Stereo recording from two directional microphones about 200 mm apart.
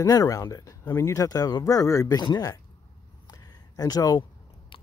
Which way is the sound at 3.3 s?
20° left (ahead or behind).